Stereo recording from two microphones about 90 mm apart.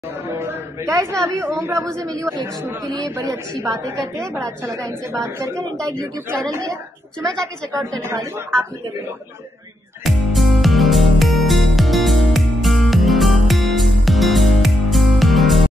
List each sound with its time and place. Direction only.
0.4 s a man's voice: 35° right (ahead or behind)
8.1 s a man's voice: 35° right (ahead or behind)
10.0 s music: centre (ahead or behind)